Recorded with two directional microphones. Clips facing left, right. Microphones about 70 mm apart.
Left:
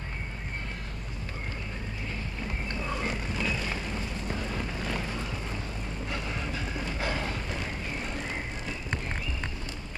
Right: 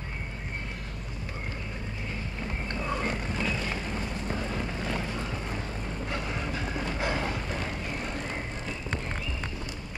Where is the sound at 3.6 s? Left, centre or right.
Right.